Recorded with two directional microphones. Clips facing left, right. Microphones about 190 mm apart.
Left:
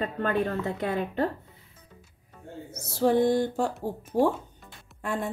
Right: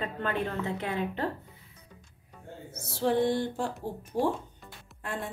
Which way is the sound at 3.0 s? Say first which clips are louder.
Left 4 dB; 45° left (ahead or behind).